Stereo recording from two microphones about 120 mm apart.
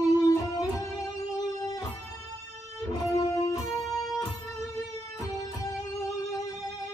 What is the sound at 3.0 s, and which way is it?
Music, 30° left (ahead or behind).